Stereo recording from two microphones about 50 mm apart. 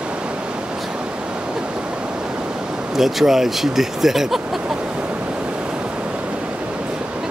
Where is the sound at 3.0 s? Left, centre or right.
Centre.